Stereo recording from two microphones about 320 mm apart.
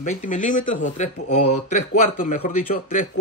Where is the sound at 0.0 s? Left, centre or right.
Left.